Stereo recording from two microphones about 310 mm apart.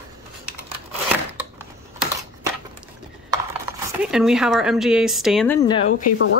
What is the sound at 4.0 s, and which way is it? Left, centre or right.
Speech, centre.